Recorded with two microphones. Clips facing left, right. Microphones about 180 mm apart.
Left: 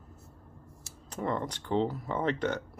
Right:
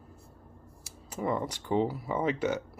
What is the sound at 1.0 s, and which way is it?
Speech, 10° right (ahead or behind).